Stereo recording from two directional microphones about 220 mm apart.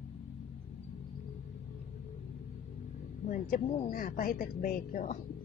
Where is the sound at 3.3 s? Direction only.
35° left (ahead or behind).